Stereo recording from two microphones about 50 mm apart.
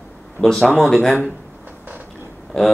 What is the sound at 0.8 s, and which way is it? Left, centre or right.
Speech, centre.